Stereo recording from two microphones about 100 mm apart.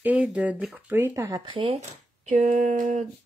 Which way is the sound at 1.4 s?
60° right (ahead or behind).